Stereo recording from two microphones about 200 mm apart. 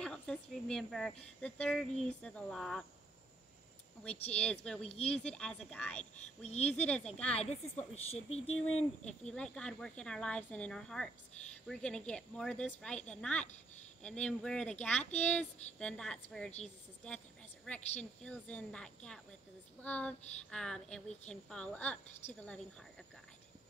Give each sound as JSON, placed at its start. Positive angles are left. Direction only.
{"t": 0.0, "sound": "speech", "side_deg": 5}
{"t": 4.0, "sound": "speech", "side_deg": 5}
{"t": 7.3, "sound": "a woman's voice", "side_deg": 30}
{"t": 9.3, "sound": "speech", "side_deg": 5}
{"t": 18.2, "sound": "speech", "side_deg": 5}